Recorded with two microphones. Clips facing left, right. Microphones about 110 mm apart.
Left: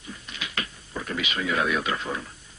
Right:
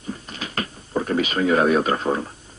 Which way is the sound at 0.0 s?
40° right (ahead or behind).